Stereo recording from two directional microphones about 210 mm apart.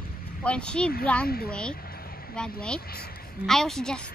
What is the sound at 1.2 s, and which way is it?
Speech, 45° left (ahead or behind).